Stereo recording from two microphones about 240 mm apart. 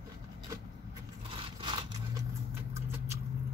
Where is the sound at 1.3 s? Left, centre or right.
Centre.